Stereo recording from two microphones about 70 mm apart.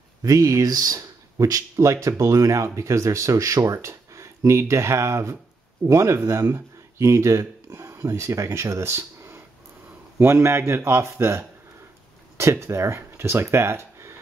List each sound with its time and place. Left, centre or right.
0.2 s speech: right